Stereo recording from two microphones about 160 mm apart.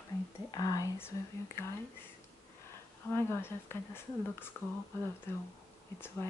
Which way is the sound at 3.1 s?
15° left (ahead or behind).